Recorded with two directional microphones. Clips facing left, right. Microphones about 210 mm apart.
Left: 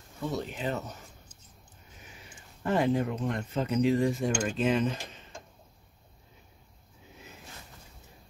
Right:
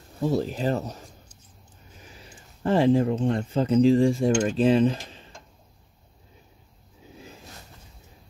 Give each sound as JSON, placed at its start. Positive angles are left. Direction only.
{"t": 0.2, "sound": "speech", "side_deg": -35}
{"t": 2.6, "sound": "speech", "side_deg": -30}